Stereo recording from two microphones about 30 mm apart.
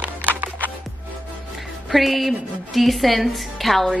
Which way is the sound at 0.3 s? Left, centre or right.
Right.